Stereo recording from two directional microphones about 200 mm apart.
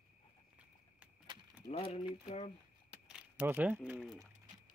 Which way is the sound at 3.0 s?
5° right (ahead or behind).